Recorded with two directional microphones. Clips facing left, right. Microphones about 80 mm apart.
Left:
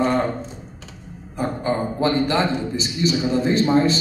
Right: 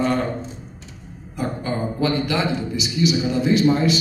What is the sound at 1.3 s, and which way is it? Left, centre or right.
A man's voice, left.